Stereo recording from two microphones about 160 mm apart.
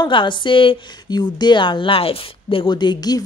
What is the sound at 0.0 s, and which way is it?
A woman's voice, 30° left (ahead or behind).